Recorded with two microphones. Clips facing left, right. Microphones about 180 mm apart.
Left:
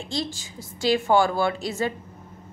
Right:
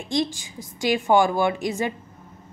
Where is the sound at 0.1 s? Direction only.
15° right (ahead or behind).